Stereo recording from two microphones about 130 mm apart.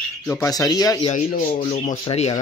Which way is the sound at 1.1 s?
90° left.